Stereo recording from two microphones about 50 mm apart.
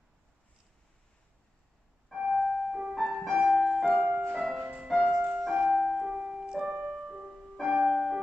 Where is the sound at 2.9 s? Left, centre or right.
Centre.